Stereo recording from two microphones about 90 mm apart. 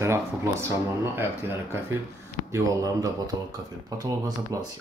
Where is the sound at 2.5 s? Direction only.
40° right (ahead or behind).